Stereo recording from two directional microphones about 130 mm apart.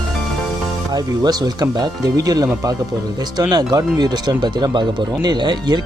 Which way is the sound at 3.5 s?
30° right (ahead or behind).